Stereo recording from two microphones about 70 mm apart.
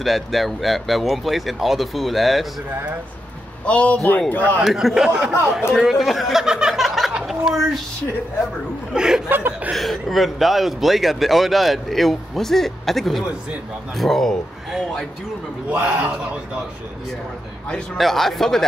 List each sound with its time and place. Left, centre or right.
0.0 s speech: centre
3.6 s a man's voice: centre
4.6 s speech: centre
5.5 s a sound: centre
7.2 s a woman's voice: centre
8.9 s speech: centre
9.7 s speech: centre
15.7 s a man's voice: right
17.9 s speech: centre